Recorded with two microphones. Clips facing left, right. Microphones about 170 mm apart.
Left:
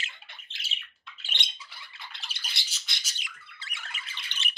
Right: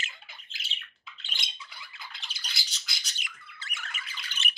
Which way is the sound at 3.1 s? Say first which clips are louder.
Right 1 dB; 50° right (ahead or behind).